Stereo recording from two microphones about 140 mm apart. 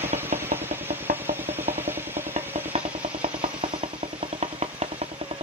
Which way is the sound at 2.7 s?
40° right (ahead or behind).